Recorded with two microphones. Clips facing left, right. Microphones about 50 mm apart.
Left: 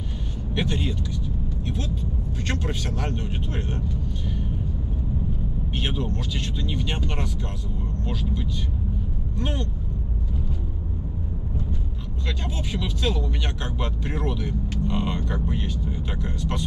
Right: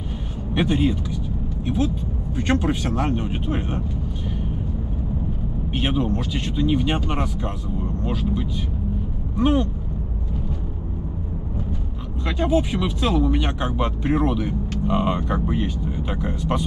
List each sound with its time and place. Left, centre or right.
0.6 s speech: centre
2.3 s speech: centre
5.7 s speech: centre
12.3 s speech: centre